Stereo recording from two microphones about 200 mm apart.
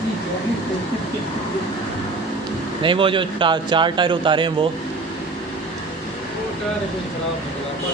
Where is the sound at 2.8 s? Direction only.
25° right (ahead or behind).